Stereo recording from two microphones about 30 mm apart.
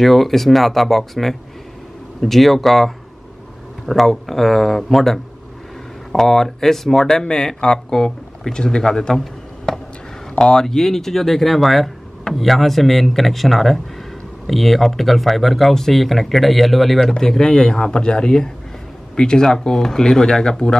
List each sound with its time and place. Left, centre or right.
0.0 s speech: centre
7.1 s speech: left
9.7 s a sound: centre
10.4 s speech: left
10.8 s speech: centre
17.2 s speech: centre